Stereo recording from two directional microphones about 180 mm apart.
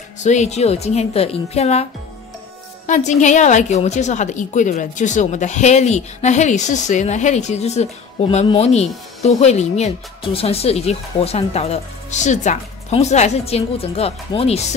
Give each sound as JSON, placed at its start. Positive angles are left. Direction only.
{"t": 0.2, "sound": "a woman's voice", "side_deg": 40}
{"t": 2.9, "sound": "a woman's voice", "side_deg": 40}